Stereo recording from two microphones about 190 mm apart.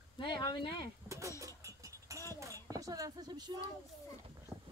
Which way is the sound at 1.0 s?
15° right (ahead or behind).